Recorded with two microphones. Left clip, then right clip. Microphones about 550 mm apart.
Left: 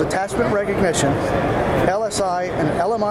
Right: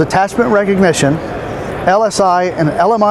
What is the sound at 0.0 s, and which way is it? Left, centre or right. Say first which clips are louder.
Speech: right 7 dB; right.